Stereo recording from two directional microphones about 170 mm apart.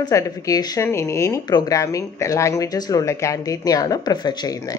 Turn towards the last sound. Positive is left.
turn(degrees=20)  # may be behind; listen again after turning